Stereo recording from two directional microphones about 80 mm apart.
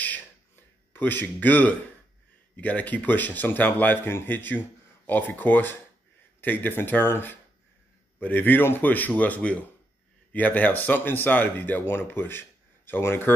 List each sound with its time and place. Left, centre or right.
0.9 s speech: left